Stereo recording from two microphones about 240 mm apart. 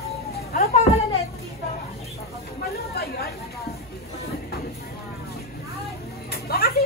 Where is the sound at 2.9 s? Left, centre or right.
Left.